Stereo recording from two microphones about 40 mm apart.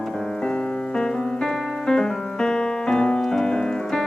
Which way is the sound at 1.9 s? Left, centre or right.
Centre.